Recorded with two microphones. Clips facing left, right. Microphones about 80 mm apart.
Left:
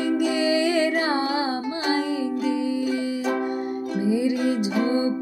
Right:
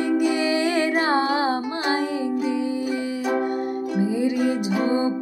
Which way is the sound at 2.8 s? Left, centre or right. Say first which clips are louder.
Even; centre.